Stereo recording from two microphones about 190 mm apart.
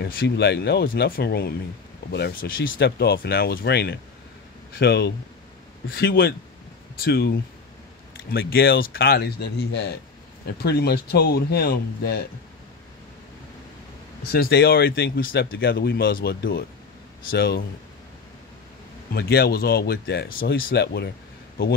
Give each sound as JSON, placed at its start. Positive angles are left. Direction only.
{"t": 0.0, "sound": "speech", "side_deg": 60}
{"t": 14.3, "sound": "speech", "side_deg": 55}
{"t": 19.1, "sound": "speech", "side_deg": 55}